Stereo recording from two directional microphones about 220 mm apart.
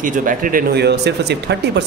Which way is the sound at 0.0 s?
40° right (ahead or behind).